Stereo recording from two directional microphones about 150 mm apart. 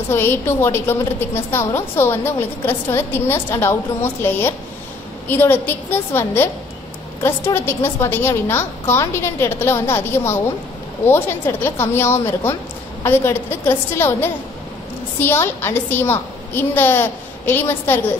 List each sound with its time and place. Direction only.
0.1 s a woman's voice: 15° left (ahead or behind)